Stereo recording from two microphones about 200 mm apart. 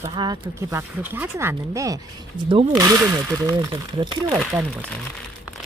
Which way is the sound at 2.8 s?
15° right (ahead or behind).